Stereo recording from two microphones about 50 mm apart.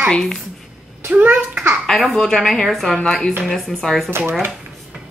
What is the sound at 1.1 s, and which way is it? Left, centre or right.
Speech, right.